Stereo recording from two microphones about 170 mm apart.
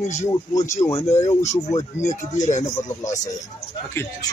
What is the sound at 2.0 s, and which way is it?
Speech, 45° left (ahead or behind).